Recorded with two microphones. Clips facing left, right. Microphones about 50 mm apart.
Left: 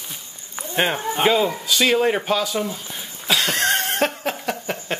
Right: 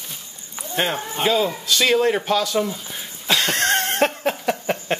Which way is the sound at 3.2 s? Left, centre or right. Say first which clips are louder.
Even; centre.